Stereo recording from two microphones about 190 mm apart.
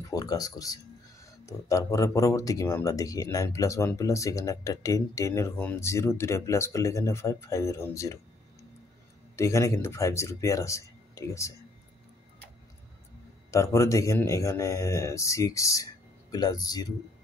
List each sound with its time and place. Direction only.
0.1 s speech: 20° left (ahead or behind)
9.4 s speech: 15° left (ahead or behind)
13.5 s speech: 15° left (ahead or behind)